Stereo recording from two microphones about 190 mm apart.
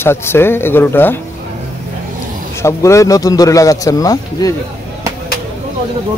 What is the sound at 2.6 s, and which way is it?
A man's voice, 15° left (ahead or behind).